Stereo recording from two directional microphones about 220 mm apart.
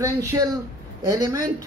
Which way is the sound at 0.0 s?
15° right (ahead or behind).